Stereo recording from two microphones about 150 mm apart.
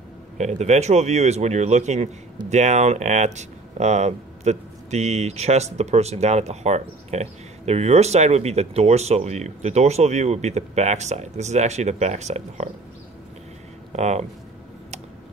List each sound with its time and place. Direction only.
0.4 s speech: 50° right (ahead or behind)
13.9 s speech: 50° right (ahead or behind)